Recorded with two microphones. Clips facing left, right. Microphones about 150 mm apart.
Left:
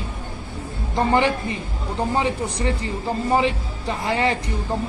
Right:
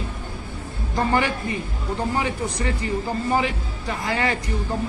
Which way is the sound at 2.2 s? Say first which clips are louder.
Left 2 dB; 30° left (ahead or behind).